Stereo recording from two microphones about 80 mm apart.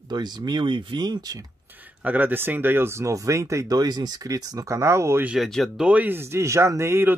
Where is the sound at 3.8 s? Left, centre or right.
Right.